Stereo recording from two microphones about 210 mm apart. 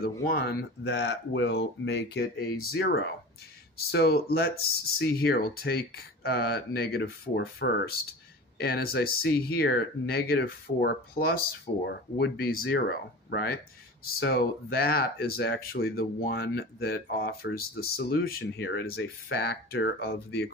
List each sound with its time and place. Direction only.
0.2 s speech: 45° left (ahead or behind)